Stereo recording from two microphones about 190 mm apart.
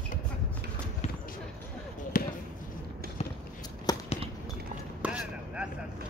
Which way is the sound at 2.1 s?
45° left (ahead or behind).